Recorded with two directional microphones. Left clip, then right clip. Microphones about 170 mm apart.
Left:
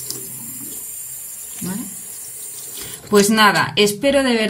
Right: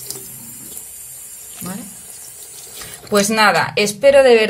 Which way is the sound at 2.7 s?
25° right (ahead or behind).